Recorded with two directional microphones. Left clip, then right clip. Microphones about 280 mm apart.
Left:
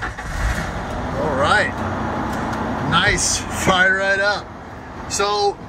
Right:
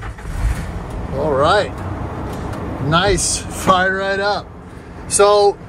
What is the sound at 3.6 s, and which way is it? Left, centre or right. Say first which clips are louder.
Speech: right 1 dB; centre.